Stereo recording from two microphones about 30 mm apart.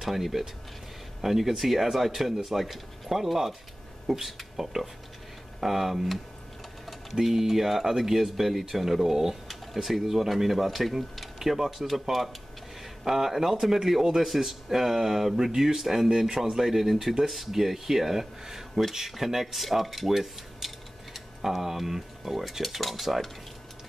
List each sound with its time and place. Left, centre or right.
0.0 s speech: centre
7.2 s speech: centre
9.5 s speech: centre
22.6 s speech: centre